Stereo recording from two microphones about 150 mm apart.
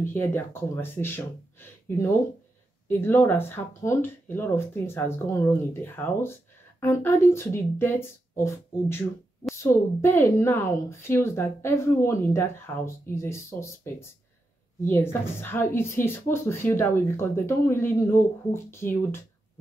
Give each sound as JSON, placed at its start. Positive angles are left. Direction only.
{"t": 0.0, "sound": "speech", "side_deg": 15}